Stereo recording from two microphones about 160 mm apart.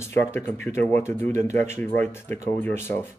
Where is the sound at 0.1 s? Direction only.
15° left (ahead or behind).